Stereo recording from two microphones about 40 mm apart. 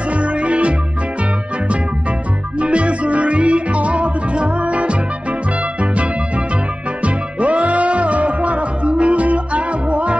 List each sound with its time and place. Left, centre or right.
0.1 s music: right
2.6 s music: right